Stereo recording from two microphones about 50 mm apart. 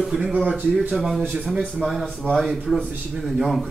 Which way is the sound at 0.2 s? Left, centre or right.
Right.